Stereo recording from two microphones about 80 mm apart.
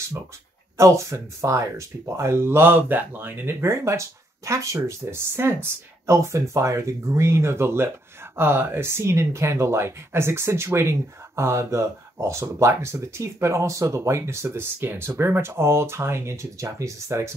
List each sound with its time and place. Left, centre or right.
0.7 s speech: right
6.1 s speech: right